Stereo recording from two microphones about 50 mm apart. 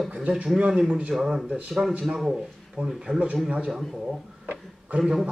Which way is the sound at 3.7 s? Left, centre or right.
Centre.